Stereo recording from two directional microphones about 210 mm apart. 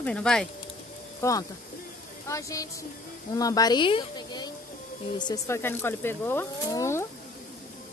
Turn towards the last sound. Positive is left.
turn(degrees=15)  # may be behind; listen again after turning